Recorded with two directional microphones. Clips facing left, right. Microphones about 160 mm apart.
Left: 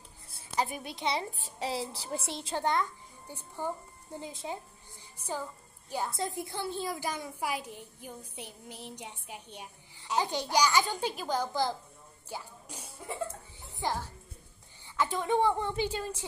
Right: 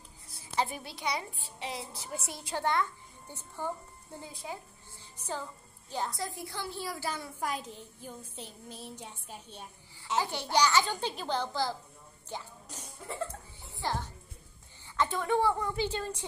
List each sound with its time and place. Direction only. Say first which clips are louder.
0.7 s a child's voice: left 2 dB; 15° left (ahead or behind)
1.4 s a child's voice: left 5 dB; 35° left (ahead or behind)
5.2 s music: left 1 dB; 10° left (ahead or behind)
5.9 s a woman's voice: left 1 dB; 10° left (ahead or behind)
6.1 s a woman's voice: left 3 dB; 20° left (ahead or behind)
12.3 s music: even; 10° left (ahead or behind)
15.0 s a child's voice: left 1 dB; 15° left (ahead or behind)